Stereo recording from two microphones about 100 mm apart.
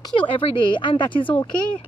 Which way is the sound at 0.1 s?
60° left (ahead or behind).